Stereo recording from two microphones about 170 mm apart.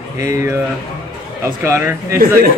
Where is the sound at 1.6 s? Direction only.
15° right (ahead or behind).